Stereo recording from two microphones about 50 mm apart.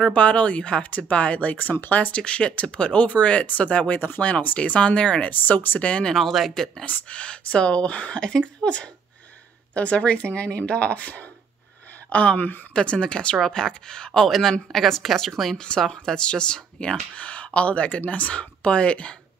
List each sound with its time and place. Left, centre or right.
0.0 s speech: left
0.8 s speech: left
5.3 s speech: left
5.8 s speech: left
6.1 s speech: centre
6.9 s speech: left
12.7 s speech: centre
15.5 s speech: centre
17.1 s speech: left